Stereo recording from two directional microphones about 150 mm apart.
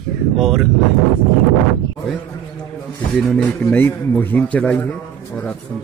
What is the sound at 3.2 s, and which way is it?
A man's voice, 5° left (ahead or behind).